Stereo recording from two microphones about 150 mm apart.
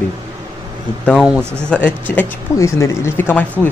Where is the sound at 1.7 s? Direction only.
10° left (ahead or behind).